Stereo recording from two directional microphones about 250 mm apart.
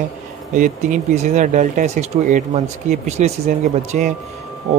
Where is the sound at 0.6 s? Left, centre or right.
Right.